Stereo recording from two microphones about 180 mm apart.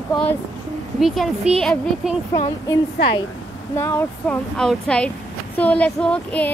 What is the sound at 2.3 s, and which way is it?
A woman's voice, 20° left (ahead or behind).